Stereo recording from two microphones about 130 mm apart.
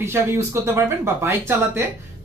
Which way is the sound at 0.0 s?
20° right (ahead or behind).